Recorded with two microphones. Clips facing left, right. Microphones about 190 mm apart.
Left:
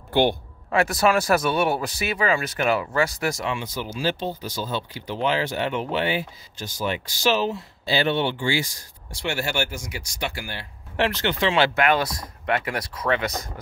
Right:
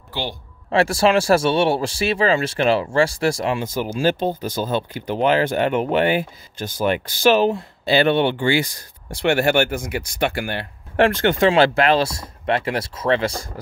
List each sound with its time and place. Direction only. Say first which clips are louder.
0.1 s speech: left 8 dB; 55° left (ahead or behind)
0.7 s speech: right 3 dB; 30° right (ahead or behind)